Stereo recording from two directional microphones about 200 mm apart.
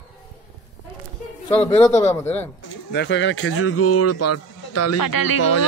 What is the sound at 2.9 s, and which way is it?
Speech, 60° left (ahead or behind).